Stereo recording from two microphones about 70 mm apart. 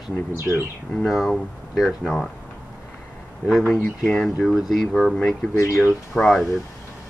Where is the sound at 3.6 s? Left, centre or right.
Centre.